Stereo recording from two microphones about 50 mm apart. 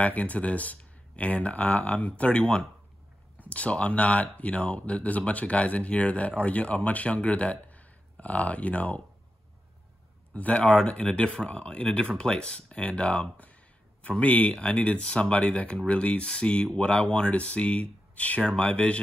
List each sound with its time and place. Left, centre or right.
0.0 s speech: left
2.3 s speech: centre
3.3 s speech: left
10.3 s speech: left